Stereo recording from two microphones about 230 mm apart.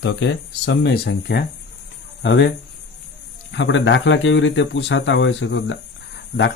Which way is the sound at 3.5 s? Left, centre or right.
Left.